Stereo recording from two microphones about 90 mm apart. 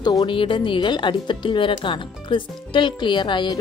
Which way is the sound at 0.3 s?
70° left (ahead or behind).